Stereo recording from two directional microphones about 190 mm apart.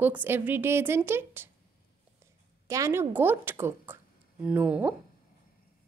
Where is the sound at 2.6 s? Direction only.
15° right (ahead or behind).